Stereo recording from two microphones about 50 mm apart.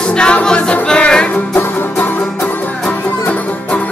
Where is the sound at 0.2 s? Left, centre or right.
Centre.